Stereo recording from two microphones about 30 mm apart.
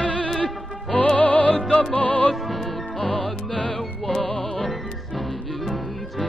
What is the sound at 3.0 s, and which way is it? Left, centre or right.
Music, left.